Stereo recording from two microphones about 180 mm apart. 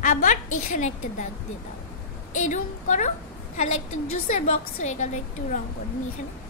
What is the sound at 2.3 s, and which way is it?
Speech, 45° left (ahead or behind).